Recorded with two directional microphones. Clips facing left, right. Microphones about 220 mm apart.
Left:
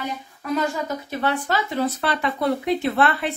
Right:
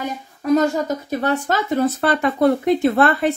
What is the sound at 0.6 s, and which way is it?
Speech, 40° right (ahead or behind).